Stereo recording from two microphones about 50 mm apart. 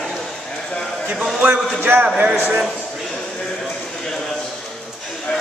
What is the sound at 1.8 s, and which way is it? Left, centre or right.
Speech, right.